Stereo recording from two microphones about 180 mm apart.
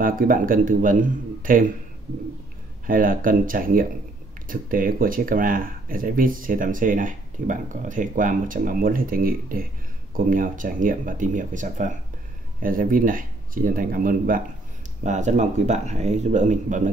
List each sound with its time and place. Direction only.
0.0 s speech: 50° right (ahead or behind)
2.9 s speech: 50° right (ahead or behind)